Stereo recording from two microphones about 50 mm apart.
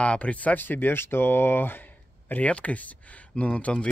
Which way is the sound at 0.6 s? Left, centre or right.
Left.